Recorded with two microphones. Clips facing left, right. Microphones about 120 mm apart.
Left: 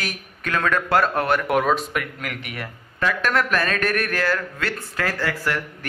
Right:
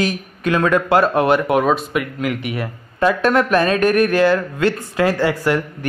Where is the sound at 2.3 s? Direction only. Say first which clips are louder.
Right 9 dB; 25° right (ahead or behind).